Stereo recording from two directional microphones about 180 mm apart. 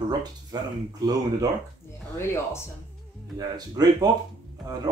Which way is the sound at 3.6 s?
20° right (ahead or behind).